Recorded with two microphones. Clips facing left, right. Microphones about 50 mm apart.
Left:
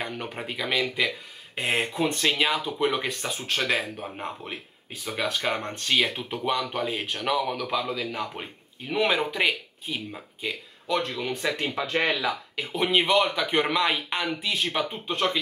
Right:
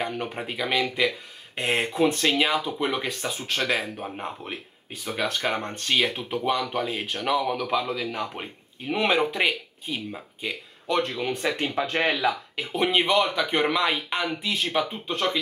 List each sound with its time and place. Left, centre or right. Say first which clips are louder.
0.0 s speech: right 3 dB; centre
10.9 s speech: right 2 dB; centre
11.1 s speech: right 2 dB; centre